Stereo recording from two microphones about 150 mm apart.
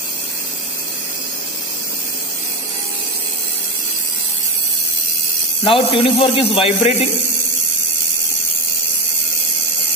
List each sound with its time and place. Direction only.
5.6 s a man's voice: 40° left (ahead or behind)